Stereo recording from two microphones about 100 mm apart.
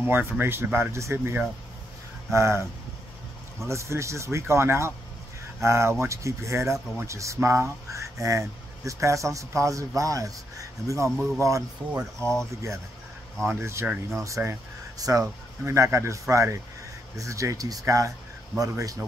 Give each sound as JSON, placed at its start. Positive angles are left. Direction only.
{"t": 0.0, "sound": "speech", "side_deg": -20}
{"t": 3.6, "sound": "speech", "side_deg": -30}
{"t": 12.2, "sound": "speech", "side_deg": 5}
{"t": 13.6, "sound": "speech", "side_deg": -25}